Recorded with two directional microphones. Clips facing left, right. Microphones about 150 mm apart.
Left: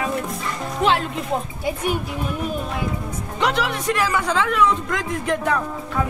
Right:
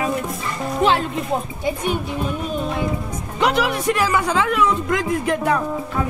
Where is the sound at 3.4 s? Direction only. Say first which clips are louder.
Right 3 dB; 5° right (ahead or behind).